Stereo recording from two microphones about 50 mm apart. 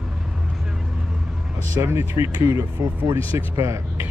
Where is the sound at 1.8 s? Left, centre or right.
Right.